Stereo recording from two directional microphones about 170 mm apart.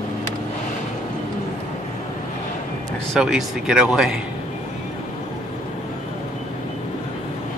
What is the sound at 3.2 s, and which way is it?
Speech, 5° right (ahead or behind).